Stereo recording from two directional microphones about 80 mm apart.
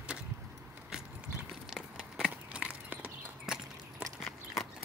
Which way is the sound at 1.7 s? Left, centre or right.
Centre.